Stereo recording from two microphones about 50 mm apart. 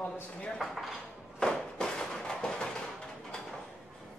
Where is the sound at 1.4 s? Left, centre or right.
Centre.